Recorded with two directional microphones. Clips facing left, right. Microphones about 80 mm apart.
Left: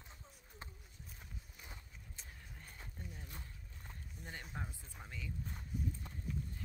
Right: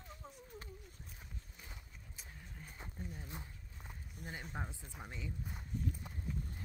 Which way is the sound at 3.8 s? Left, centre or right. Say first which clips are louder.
Right 2 dB; centre.